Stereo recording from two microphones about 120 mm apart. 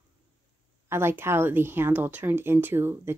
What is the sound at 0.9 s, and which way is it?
Speech, 20° right (ahead or behind).